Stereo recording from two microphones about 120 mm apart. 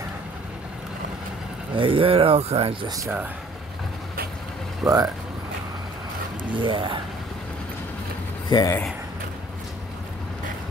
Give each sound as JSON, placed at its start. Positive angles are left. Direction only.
{"t": 1.8, "sound": "speech", "side_deg": -50}
{"t": 4.8, "sound": "speech", "side_deg": -30}
{"t": 6.5, "sound": "speech", "side_deg": -45}
{"t": 8.5, "sound": "speech", "side_deg": 35}